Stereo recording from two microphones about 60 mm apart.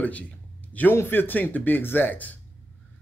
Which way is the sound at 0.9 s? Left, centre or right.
Left.